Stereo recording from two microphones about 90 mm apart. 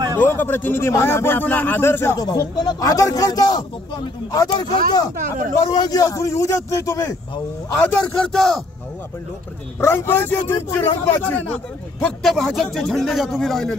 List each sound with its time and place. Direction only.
0.2 s a man's voice: 25° left (ahead or behind)
2.1 s a man's voice: 50° left (ahead or behind)
5.8 s a man's voice: 45° left (ahead or behind)
7.8 s speech: 10° left (ahead or behind)
9.8 s a man's voice: 25° left (ahead or behind)
12.2 s speech: 5° left (ahead or behind)